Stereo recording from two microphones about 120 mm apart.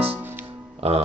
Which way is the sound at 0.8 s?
55° right (ahead or behind).